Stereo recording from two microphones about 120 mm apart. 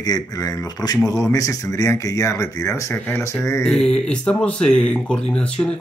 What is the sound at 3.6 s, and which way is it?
Speech, 5° left (ahead or behind).